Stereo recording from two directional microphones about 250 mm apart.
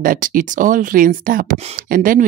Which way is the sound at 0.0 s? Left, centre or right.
Right.